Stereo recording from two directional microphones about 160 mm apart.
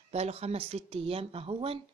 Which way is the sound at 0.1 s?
40° right (ahead or behind).